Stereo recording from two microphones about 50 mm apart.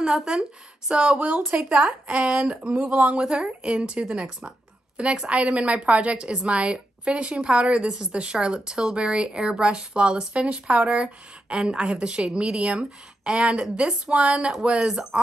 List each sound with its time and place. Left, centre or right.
0.0 s speech: centre
1.7 s a woman's voice: right
2.9 s a woman's voice: right
3.2 s a woman's voice: centre